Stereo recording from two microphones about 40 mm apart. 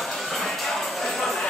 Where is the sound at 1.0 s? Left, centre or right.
Centre.